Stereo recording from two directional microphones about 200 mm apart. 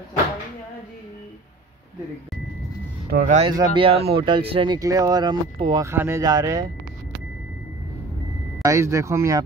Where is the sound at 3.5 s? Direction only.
20° right (ahead or behind).